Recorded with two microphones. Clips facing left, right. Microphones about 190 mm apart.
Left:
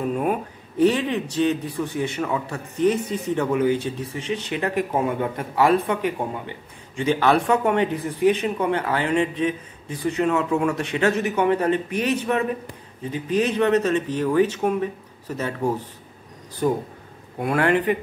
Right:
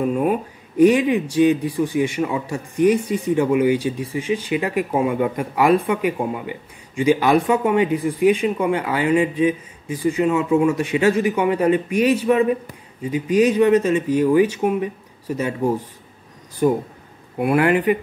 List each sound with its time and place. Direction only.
0.7 s a man's voice: 15° right (ahead or behind)